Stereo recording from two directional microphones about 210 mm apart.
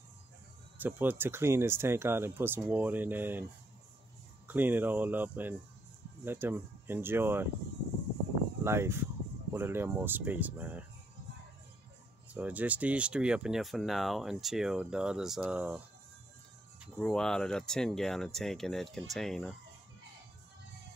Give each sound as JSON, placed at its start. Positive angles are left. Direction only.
{"t": 0.7, "sound": "speech", "side_deg": -10}
{"t": 4.5, "sound": "speech", "side_deg": -10}
{"t": 8.6, "sound": "speech", "side_deg": -10}
{"t": 12.4, "sound": "speech", "side_deg": -5}
{"t": 16.8, "sound": "speech", "side_deg": 0}